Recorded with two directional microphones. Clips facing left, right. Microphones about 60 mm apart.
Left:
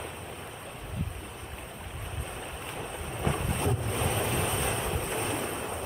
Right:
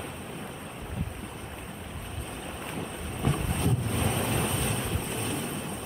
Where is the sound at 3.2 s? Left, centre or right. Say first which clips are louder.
Right 1 dB; left.